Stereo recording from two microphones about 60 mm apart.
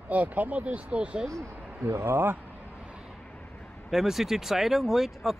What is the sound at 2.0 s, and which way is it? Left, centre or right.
Speech, right.